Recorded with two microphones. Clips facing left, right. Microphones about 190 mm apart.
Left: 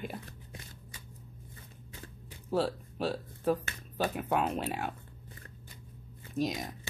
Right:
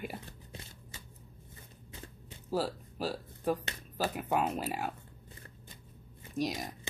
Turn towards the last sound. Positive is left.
turn(degrees=0)  # may be behind; listen again after turning